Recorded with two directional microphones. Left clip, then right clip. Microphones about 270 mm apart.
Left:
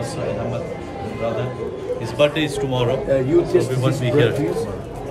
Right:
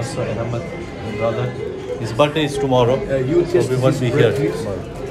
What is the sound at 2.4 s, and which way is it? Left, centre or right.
Speech, centre.